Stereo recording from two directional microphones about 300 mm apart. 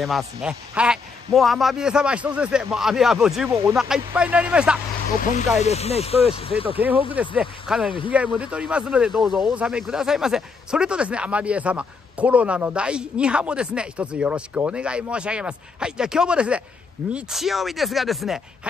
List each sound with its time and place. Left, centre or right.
0.0 s speech: centre
5.2 s speech: left
7.2 s speech: centre